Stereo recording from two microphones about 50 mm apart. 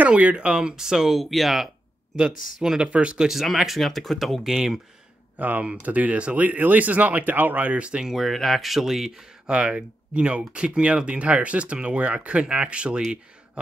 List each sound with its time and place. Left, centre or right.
0.0 s speech: right; by 1.2 s centre
1.2 s speech: centre
2.1 s speech: centre
3.3 s speech: centre
4.4 s speech: centre
5.4 s speech: right
7.8 s speech: right
8.1 s speech: centre
9.5 s speech: right